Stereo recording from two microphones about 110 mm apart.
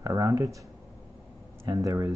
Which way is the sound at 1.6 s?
30° right (ahead or behind).